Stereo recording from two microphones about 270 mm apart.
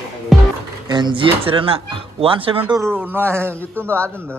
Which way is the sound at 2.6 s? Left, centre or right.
Centre.